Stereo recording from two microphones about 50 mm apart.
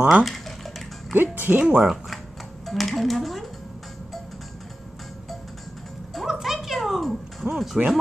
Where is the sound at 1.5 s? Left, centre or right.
Right.